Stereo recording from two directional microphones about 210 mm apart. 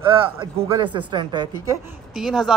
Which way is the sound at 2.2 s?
Centre (ahead or behind).